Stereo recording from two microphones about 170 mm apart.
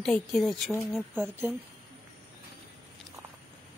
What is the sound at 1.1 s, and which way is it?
Speech, 10° right (ahead or behind).